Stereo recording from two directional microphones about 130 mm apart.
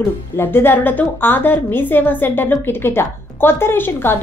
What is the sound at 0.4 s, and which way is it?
A woman's voice, 15° left (ahead or behind).